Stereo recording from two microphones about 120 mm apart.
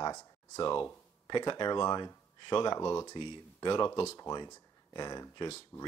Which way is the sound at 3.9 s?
25° left (ahead or behind).